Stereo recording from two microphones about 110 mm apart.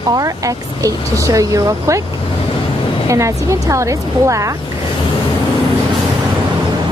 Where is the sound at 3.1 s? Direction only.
25° right (ahead or behind).